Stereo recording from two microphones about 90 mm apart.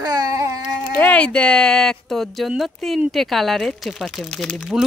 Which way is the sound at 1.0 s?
15° left (ahead or behind).